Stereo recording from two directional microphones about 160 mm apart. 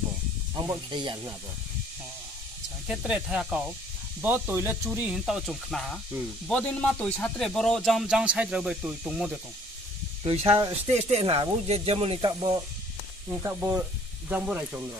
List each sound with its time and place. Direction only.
0.6 s speech: 25° right (ahead or behind)
2.9 s speech: 5° right (ahead or behind)
10.2 s speech: 35° right (ahead or behind)
13.4 s speech: 15° right (ahead or behind)